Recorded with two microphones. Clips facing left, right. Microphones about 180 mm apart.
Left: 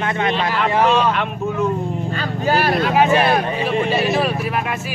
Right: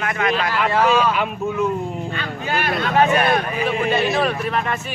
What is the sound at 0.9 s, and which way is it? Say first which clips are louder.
Speech: left 1 dB; 5° right (ahead or behind).